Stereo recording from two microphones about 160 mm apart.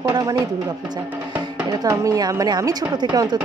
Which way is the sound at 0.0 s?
25° right (ahead or behind).